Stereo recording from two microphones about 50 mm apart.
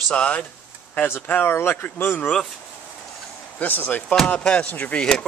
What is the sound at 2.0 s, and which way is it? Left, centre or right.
Speech, left.